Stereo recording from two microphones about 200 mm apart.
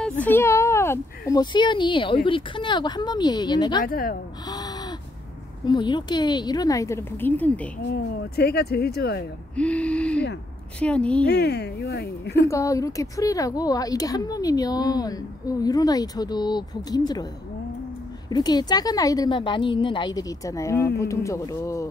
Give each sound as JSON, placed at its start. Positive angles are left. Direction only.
{"t": 0.2, "sound": "speech", "side_deg": 10}
{"t": 3.8, "sound": "speech", "side_deg": 45}
{"t": 4.5, "sound": "a sound", "side_deg": 20}
{"t": 5.7, "sound": "speech", "side_deg": 20}
{"t": 7.8, "sound": "speech", "side_deg": 55}
{"t": 9.6, "sound": "gasp", "side_deg": 5}
{"t": 11.2, "sound": "speech", "side_deg": 55}
{"t": 12.4, "sound": "speech", "side_deg": 15}
{"t": 18.3, "sound": "speech", "side_deg": 20}